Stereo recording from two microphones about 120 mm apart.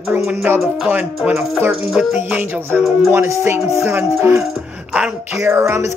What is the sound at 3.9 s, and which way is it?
Speech, 15° right (ahead or behind).